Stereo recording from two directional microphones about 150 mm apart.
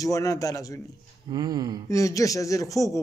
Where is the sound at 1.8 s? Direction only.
20° left (ahead or behind).